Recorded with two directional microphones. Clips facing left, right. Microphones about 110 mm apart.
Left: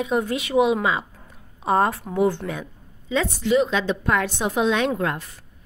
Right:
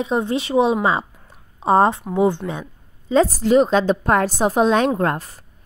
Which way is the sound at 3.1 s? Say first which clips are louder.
Right 6 dB; 40° right (ahead or behind).